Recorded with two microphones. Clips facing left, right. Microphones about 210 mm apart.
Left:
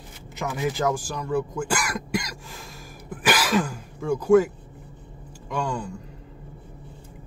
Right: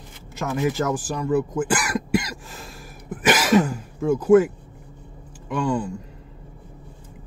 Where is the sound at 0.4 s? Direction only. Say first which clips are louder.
Right 3 dB; centre (ahead or behind).